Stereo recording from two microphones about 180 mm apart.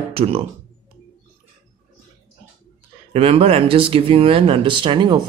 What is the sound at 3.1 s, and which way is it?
Speech, 35° right (ahead or behind).